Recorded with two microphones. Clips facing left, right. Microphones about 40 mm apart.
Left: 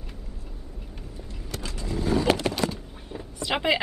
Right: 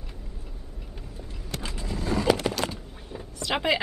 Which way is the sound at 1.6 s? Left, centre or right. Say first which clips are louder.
Even; right.